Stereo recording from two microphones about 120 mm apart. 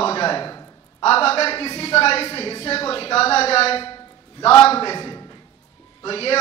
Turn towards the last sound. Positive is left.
turn(degrees=55)  # may be behind; listen again after turning